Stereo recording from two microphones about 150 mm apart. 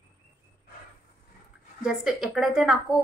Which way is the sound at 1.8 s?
5° right (ahead or behind).